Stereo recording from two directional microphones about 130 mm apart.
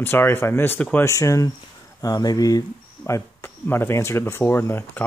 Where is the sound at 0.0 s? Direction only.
15° left (ahead or behind).